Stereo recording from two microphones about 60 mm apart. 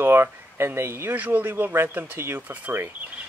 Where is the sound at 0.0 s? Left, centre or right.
Right.